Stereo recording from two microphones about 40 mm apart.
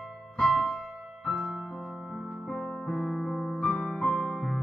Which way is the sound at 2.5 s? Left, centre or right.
Centre.